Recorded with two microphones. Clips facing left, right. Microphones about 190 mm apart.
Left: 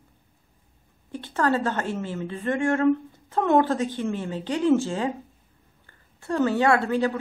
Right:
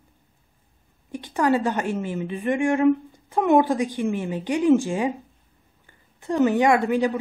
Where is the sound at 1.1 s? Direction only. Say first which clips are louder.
Right 3 dB; 15° right (ahead or behind).